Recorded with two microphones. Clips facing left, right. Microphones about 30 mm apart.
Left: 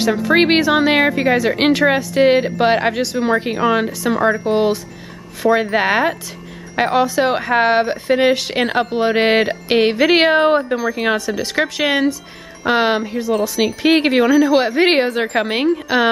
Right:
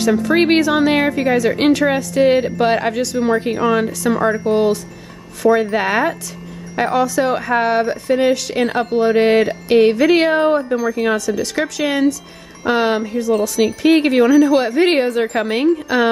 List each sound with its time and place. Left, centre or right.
0.0 s speech: centre